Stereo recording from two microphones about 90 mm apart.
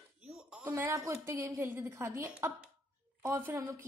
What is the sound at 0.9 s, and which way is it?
A woman's voice, 35° right (ahead or behind).